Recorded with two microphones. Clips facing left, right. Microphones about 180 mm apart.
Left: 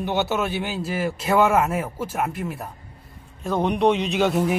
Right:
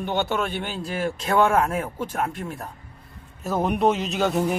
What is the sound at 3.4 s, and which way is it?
A man's voice, 5° right (ahead or behind).